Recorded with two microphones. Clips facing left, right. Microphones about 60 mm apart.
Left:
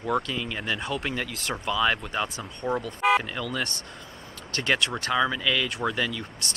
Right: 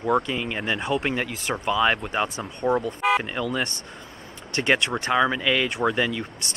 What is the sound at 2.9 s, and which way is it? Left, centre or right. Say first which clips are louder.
Speech: even; centre.